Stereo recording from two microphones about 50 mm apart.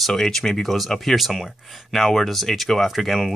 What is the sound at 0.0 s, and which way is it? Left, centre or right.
Speech, centre.